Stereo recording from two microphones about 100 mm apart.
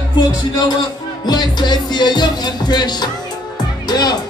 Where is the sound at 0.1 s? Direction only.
50° left (ahead or behind).